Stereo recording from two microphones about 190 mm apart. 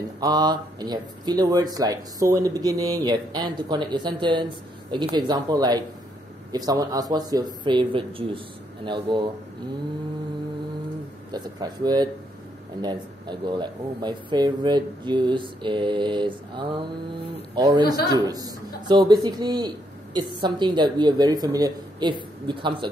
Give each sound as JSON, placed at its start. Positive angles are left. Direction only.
{"t": 0.2, "sound": "speech", "side_deg": -20}
{"t": 11.3, "sound": "speech", "side_deg": -20}